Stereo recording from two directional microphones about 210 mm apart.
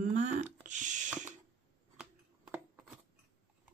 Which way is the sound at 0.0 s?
35° right (ahead or behind).